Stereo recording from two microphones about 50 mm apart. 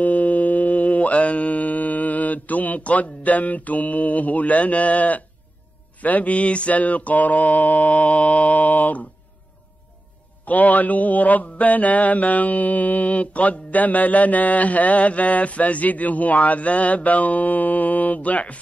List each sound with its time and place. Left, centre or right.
0.0 s mantra: left
10.4 s mantra: left